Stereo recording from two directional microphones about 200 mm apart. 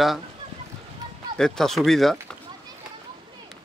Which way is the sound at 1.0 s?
20° right (ahead or behind).